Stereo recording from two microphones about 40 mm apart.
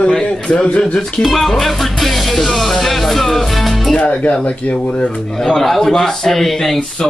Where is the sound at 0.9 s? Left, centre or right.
Centre.